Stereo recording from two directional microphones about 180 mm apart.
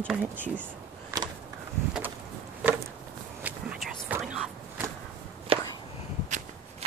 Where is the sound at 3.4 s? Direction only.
5° right (ahead or behind).